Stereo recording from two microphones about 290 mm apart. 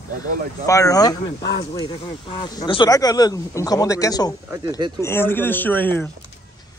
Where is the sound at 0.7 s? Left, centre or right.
Centre.